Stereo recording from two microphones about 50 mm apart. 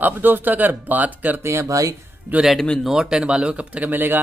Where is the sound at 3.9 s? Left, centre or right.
Right.